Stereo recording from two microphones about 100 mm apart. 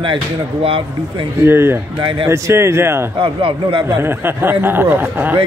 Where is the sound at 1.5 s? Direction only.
25° right (ahead or behind).